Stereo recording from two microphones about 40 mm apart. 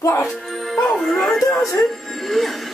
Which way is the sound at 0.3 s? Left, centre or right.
Centre.